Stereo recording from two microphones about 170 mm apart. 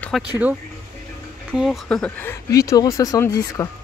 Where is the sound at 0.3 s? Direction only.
10° right (ahead or behind); by 3.6 s 20° left (ahead or behind).